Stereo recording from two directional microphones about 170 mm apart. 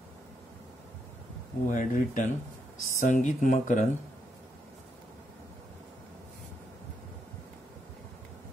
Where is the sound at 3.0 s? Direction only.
45° left (ahead or behind).